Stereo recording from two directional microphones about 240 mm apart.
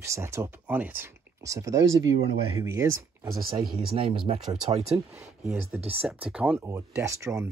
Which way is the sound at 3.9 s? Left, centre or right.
Right.